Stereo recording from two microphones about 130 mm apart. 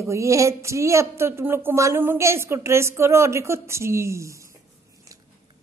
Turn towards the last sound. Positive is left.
turn(degrees=-25)  # may be behind; listen again after turning